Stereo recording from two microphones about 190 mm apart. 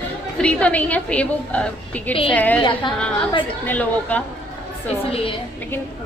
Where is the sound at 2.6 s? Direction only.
25° left (ahead or behind).